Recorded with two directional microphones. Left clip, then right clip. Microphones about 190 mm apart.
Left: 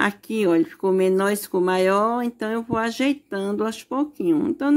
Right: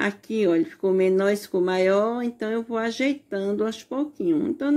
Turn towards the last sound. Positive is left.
turn(degrees=35)  # may be behind; listen again after turning